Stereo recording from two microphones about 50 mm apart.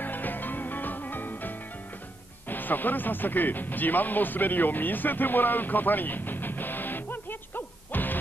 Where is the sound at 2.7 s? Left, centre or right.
Left.